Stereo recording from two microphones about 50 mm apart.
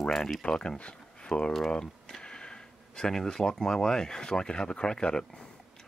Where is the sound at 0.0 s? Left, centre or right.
Centre.